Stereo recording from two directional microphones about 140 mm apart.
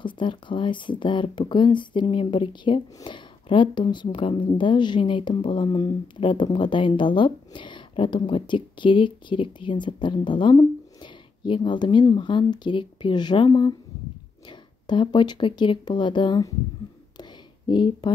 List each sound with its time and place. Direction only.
0.0 s a woman's voice: 35° left (ahead or behind)
14.9 s a woman's voice: 35° left (ahead or behind)
17.2 s a sound: 35° left (ahead or behind)